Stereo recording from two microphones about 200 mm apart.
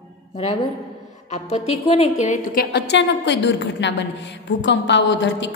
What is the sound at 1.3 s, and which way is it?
A woman's voice, 30° left (ahead or behind).